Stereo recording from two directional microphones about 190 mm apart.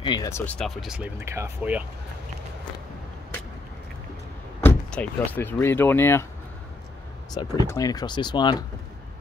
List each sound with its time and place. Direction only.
0.0 s speech: 20° left (ahead or behind); by 1.9 s 10° right (ahead or behind)
4.6 s speech: 10° left (ahead or behind)
7.3 s speech: 15° left (ahead or behind)